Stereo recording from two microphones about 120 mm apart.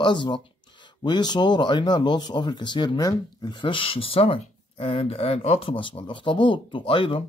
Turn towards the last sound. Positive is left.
turn(degrees=45)  # may be behind; listen again after turning